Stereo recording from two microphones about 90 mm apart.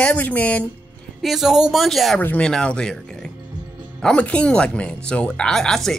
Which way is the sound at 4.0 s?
10° left (ahead or behind).